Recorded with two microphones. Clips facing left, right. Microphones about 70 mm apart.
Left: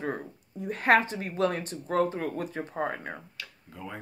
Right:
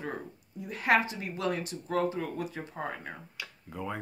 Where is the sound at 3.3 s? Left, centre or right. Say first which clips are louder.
Right 4 dB; centre.